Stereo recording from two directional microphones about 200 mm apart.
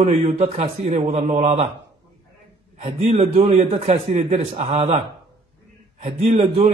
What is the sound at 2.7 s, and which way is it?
Speech, 35° right (ahead or behind).